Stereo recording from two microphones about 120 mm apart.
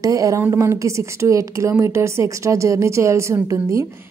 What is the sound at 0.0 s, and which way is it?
Speech, 30° right (ahead or behind).